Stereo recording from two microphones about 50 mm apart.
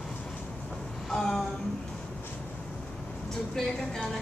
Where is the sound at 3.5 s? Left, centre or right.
Centre.